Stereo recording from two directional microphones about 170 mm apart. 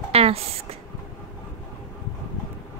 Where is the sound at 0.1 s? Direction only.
35° right (ahead or behind).